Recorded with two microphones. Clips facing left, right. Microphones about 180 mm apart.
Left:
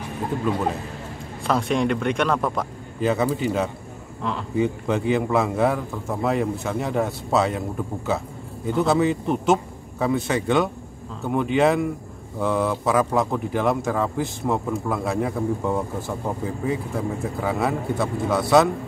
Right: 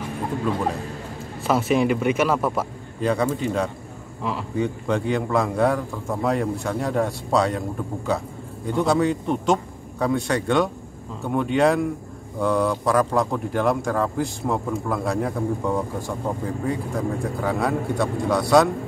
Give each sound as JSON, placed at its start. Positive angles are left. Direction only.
{"t": 1.4, "sound": "a man's voice", "side_deg": -5}
{"t": 4.6, "sound": "a man's voice", "side_deg": 5}